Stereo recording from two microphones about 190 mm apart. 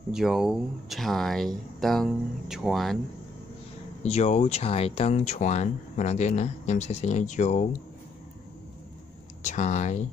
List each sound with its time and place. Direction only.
0.1 s speech: centre (ahead or behind)
4.0 s speech: 35° left (ahead or behind)
9.4 s speech: 40° left (ahead or behind)